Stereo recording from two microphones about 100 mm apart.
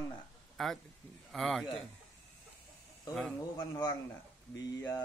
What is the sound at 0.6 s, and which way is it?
A man's voice, 5° left (ahead or behind).